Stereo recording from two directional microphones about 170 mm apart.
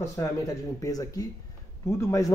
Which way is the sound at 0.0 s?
15° left (ahead or behind).